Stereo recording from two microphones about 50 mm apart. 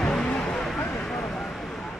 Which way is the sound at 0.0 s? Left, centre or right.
Centre.